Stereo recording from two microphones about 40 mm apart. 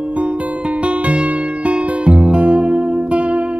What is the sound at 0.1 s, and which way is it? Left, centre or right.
Music, right.